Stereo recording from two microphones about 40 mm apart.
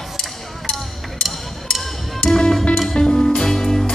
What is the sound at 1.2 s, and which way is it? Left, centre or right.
Music, centre.